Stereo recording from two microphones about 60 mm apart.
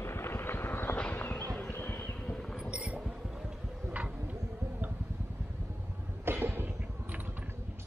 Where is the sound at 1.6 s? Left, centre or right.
Left.